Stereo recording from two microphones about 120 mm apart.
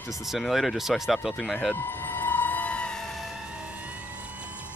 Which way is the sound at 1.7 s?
15° left (ahead or behind).